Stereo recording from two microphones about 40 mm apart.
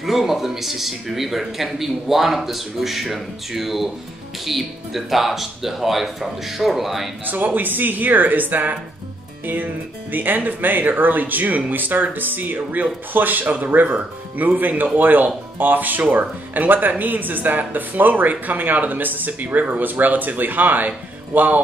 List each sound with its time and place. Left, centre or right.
0.0 s speech: centre
7.4 s speech: right
10.1 s speech: right